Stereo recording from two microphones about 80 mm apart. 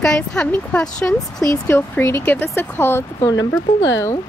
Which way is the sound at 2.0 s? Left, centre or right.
Left.